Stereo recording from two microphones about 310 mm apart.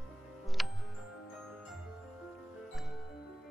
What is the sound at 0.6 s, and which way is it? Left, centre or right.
Music, centre.